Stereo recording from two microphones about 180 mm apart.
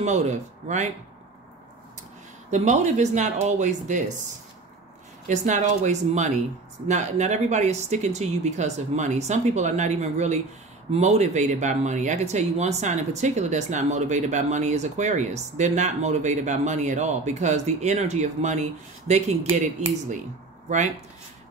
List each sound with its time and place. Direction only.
0.0 s speech: 40° right (ahead or behind)
2.5 s speech: 40° right (ahead or behind)
5.3 s speech: 40° right (ahead or behind)